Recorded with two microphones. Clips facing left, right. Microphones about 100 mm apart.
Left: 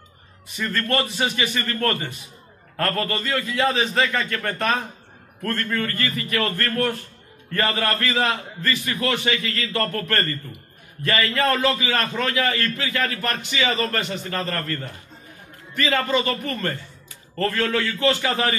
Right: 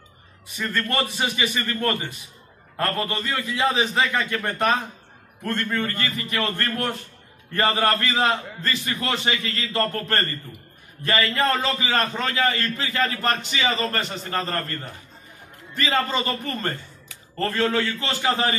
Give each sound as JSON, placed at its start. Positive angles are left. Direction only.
{"t": 0.6, "sound": "a man's voice", "side_deg": -10}
{"t": 2.8, "sound": "a man's voice", "side_deg": -15}
{"t": 15.7, "sound": "a man's voice", "side_deg": -30}